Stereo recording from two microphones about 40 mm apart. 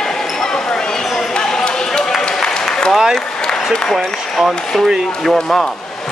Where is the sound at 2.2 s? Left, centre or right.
Centre.